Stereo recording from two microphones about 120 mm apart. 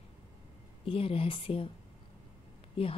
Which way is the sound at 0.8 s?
50° left (ahead or behind).